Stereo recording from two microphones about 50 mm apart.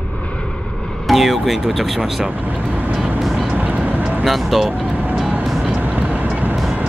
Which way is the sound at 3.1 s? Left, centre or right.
Centre.